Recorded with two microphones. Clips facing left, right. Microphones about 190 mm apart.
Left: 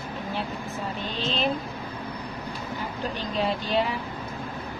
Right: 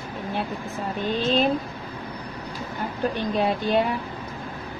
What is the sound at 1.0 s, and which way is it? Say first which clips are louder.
Vehicle: right 7 dB; 50° right (ahead or behind).